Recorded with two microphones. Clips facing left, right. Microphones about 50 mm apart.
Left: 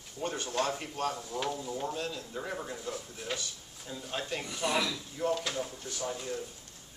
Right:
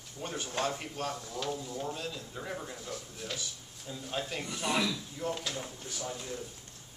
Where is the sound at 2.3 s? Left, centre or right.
Centre.